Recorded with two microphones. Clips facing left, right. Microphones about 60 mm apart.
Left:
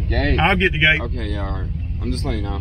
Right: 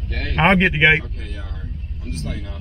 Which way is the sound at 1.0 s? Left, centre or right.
Left.